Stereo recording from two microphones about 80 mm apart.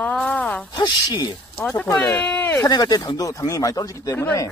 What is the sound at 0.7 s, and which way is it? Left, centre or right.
Speech, left.